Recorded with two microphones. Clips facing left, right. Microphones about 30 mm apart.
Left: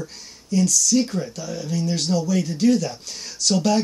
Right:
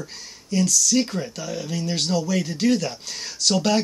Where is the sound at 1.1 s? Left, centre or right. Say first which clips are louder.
Left 1 dB; right.